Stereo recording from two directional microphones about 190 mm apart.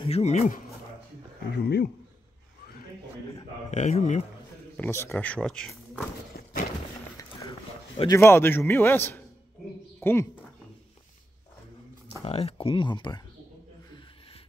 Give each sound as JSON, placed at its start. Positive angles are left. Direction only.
{"t": 0.0, "sound": "speech", "side_deg": 35}
{"t": 1.5, "sound": "speech", "side_deg": 60}
{"t": 3.7, "sound": "speech", "side_deg": 40}
{"t": 4.7, "sound": "a man's voice", "side_deg": 10}
{"t": 6.3, "sound": "horse", "side_deg": 50}
{"t": 7.2, "sound": "a sound", "side_deg": 20}
{"t": 8.1, "sound": "a man's voice", "side_deg": 15}
{"t": 12.3, "sound": "speech", "side_deg": 30}